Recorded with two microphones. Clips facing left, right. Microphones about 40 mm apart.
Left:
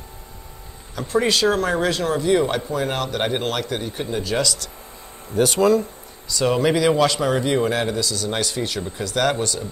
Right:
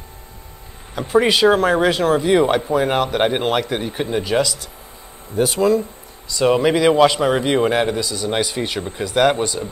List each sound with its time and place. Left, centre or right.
0.9 s speech: centre